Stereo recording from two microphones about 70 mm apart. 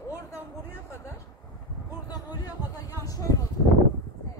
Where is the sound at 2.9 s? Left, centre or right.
Left.